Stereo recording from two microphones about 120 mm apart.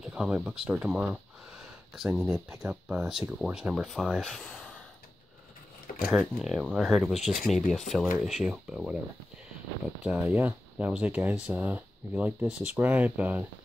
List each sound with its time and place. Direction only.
0.0 s speech: 5° right (ahead or behind)
6.0 s speech: 5° right (ahead or behind)
10.0 s speech: 10° right (ahead or behind)